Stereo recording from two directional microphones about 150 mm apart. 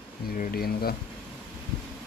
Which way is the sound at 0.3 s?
80° left.